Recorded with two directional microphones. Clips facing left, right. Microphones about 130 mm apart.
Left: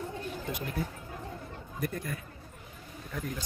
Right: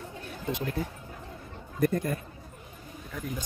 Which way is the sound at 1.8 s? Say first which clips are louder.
Right 9 dB; 40° right (ahead or behind).